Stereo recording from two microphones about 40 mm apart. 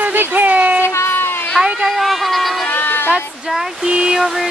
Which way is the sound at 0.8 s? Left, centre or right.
Left.